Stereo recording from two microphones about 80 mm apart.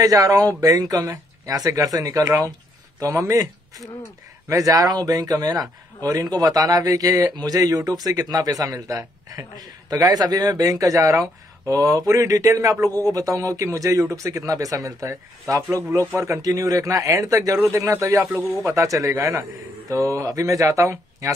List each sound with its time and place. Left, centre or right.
0.0 s speech: right